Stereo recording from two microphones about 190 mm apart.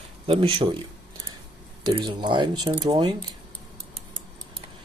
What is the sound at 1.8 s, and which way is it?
Speech, 25° right (ahead or behind).